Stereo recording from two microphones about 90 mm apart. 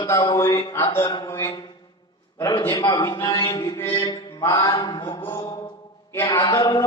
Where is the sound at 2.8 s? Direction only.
60° left (ahead or behind).